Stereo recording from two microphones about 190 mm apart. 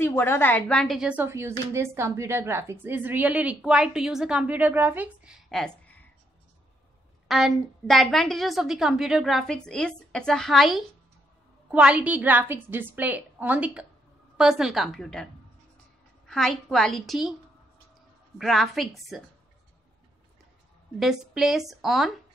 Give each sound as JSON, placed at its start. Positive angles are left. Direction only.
{"t": 0.0, "sound": "a woman's voice", "side_deg": 10}
{"t": 7.2, "sound": "a woman's voice", "side_deg": 0}
{"t": 16.3, "sound": "a woman's voice", "side_deg": 0}
{"t": 18.4, "sound": "a woman's voice", "side_deg": 0}
{"t": 21.0, "sound": "a woman's voice", "side_deg": 0}